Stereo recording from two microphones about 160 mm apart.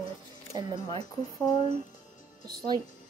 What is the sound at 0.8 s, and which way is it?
Speech, 25° left (ahead or behind).